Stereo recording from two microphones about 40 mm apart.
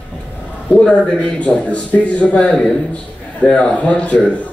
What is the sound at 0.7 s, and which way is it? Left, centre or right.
Speech, left.